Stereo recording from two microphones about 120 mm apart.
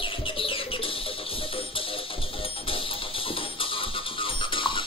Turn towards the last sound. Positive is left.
turn(degrees=45)  # may be behind; listen again after turning